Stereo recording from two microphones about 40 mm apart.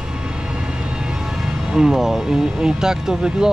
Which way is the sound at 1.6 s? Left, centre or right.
Centre.